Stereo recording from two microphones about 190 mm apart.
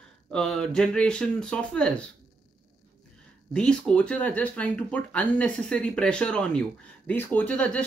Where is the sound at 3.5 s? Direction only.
5° left (ahead or behind).